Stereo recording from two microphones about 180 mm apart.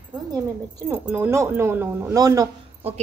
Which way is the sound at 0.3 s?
20° right (ahead or behind).